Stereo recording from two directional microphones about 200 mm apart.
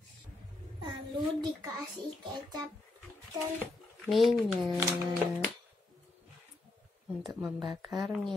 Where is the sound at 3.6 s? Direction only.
Centre (ahead or behind).